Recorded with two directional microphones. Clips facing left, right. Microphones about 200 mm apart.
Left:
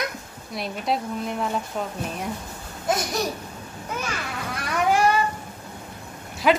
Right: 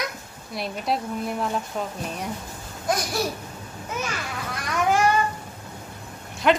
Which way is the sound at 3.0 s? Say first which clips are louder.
Even; 20° left (ahead or behind).